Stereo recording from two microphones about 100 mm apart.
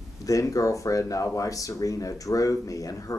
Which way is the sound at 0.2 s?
35° left (ahead or behind).